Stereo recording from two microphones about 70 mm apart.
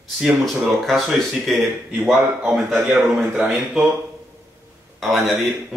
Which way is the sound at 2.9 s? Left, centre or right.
Centre.